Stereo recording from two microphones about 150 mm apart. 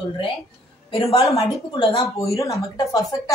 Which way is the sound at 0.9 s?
40° left (ahead or behind).